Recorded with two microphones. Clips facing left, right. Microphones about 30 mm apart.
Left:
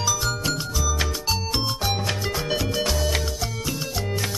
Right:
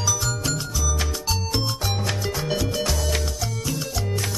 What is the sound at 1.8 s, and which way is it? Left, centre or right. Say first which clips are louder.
Music: left 1 dB; centre.